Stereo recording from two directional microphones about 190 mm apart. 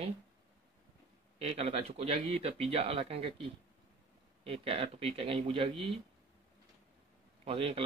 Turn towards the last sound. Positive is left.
turn(degrees=-30)  # may be behind; listen again after turning